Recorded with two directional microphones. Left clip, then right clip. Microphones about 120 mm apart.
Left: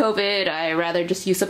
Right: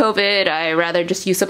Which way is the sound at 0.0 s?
35° right (ahead or behind).